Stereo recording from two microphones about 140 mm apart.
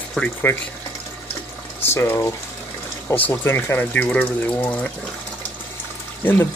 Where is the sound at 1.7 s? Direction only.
15° left (ahead or behind).